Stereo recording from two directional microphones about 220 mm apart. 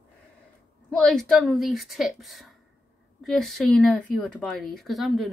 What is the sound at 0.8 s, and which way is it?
A woman's voice, 5° left (ahead or behind).